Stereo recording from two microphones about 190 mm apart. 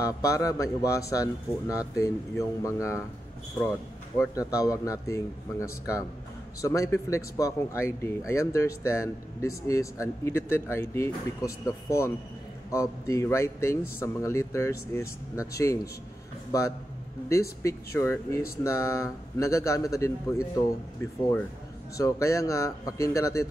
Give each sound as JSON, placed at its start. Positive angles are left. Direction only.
{"t": 0.0, "sound": "speech", "side_deg": 15}
{"t": 4.2, "sound": "speech", "side_deg": 15}
{"t": 17.3, "sound": "speech", "side_deg": 15}
{"t": 21.9, "sound": "speech", "side_deg": 15}